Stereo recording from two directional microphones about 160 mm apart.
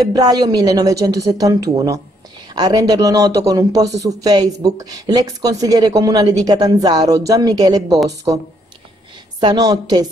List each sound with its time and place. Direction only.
0.1 s speech: 25° right (ahead or behind)
9.4 s speech: 25° right (ahead or behind)